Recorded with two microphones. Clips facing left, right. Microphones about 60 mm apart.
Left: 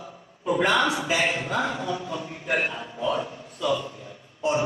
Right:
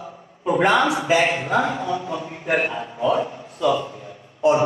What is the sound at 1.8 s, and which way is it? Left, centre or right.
A man's voice, right.